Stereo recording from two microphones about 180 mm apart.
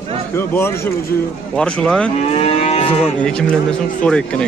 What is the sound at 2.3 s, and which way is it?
Livestock, 35° left (ahead or behind).